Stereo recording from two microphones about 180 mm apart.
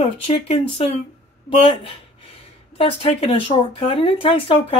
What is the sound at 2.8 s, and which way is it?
Speech, 35° left (ahead or behind).